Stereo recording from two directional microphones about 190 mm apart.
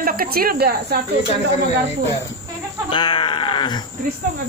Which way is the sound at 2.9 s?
25° left (ahead or behind).